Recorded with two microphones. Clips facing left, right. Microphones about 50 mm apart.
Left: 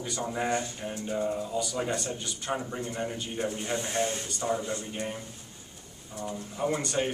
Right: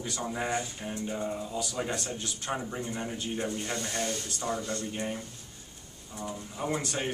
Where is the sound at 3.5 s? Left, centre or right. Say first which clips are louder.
Left 3 dB; centre.